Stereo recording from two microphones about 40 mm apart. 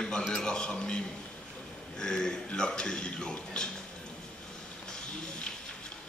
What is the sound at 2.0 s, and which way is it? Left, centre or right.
A man's voice, centre.